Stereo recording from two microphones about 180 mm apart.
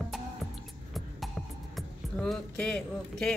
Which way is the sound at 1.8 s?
5° left (ahead or behind).